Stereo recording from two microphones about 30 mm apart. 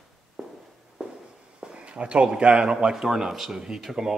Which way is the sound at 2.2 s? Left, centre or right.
Right.